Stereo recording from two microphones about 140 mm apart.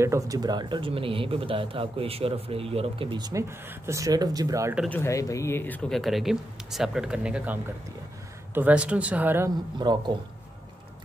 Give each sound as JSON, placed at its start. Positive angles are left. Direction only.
{"t": 0.0, "sound": "speech", "side_deg": -25}
{"t": 3.4, "sound": "speech", "side_deg": -20}
{"t": 4.8, "sound": "speech", "side_deg": 10}
{"t": 5.9, "sound": "speech", "side_deg": 0}
{"t": 8.5, "sound": "speech", "side_deg": -10}
{"t": 9.8, "sound": "speech", "side_deg": -30}